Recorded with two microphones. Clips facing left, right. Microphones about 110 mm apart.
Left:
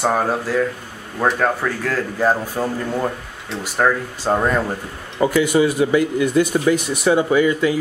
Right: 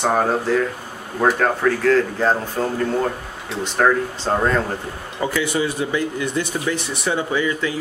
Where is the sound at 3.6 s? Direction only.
5° left (ahead or behind).